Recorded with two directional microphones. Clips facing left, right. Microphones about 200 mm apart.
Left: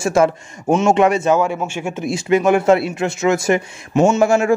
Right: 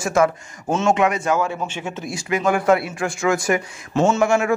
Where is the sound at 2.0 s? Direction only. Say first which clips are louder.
Left 6 dB; 25° left (ahead or behind).